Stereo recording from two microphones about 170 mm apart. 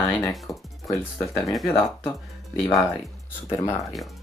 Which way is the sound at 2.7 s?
Centre (ahead or behind).